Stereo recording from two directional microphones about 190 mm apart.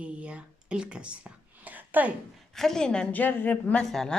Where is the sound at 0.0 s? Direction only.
5° right (ahead or behind).